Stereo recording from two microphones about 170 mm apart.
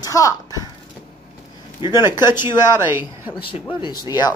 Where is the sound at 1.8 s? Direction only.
30° left (ahead or behind).